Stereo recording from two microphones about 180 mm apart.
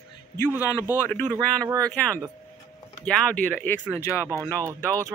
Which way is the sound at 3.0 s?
5° left (ahead or behind).